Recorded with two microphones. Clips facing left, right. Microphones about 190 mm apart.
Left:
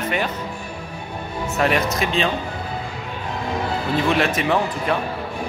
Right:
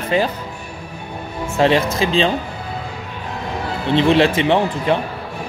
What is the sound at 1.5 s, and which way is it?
Speech, 30° right (ahead or behind).